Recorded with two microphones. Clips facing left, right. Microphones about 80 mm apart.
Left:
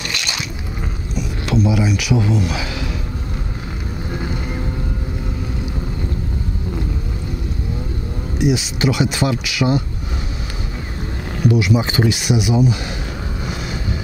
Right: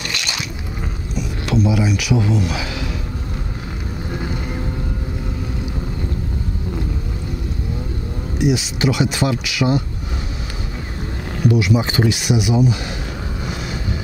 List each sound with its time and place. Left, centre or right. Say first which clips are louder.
0.0 s a sound: even; centre
1.4 s speech: even; centre
8.5 s speech: even; centre
11.5 s speech: even; centre